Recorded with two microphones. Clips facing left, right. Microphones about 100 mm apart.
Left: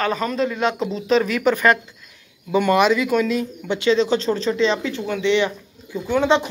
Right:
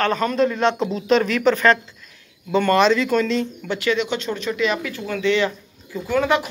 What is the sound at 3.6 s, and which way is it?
Speech, 20° left (ahead or behind).